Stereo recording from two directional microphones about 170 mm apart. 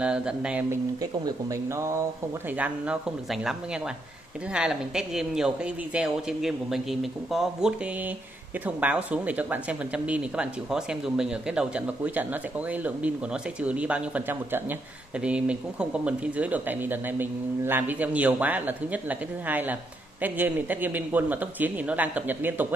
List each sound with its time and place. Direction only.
0.0 s speech: 5° right (ahead or behind)